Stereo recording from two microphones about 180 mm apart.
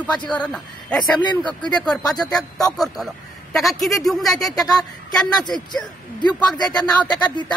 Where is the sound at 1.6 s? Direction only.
5° left (ahead or behind).